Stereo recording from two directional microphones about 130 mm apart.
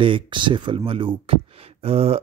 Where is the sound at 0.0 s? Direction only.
40° right (ahead or behind).